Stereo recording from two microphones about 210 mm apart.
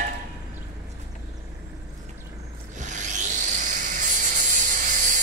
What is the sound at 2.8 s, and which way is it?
Rub, 35° right (ahead or behind).